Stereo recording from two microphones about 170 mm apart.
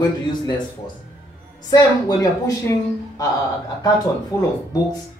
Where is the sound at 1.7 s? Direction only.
25° left (ahead or behind).